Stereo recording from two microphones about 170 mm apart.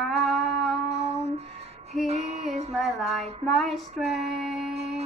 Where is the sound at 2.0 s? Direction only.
40° right (ahead or behind).